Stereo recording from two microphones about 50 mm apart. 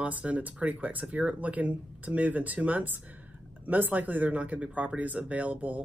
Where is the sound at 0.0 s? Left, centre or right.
Right.